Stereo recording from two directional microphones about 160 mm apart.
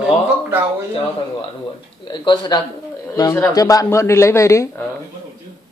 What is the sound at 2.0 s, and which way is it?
Speech, 25° left (ahead or behind).